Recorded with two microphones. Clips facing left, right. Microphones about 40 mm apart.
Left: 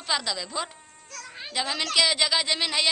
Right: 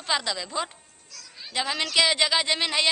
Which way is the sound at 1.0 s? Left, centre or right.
Left.